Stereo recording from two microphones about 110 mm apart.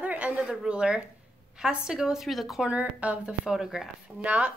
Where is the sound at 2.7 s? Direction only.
15° right (ahead or behind).